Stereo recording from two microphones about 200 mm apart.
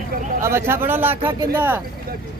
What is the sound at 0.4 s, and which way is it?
Speech, 15° right (ahead or behind).